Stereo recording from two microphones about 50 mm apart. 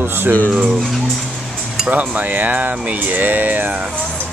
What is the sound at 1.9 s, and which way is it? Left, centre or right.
Cutlery, right.